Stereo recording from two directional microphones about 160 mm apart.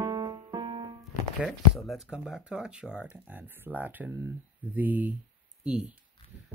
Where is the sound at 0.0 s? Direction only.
25° right (ahead or behind).